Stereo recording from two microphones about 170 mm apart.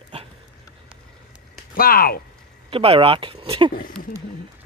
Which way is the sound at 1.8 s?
60° left (ahead or behind).